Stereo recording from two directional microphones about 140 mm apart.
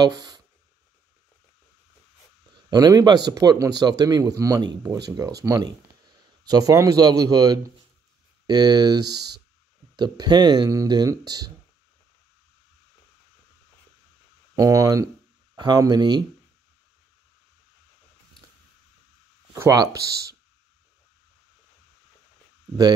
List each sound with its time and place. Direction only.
0.0 s a sound: 25° right (ahead or behind)
2.5 s speech: 30° right (ahead or behind)
14.5 s speech: 25° right (ahead or behind)
19.5 s speech: 25° right (ahead or behind)